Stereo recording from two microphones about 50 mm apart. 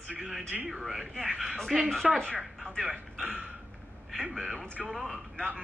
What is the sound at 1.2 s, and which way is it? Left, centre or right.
Speech, centre.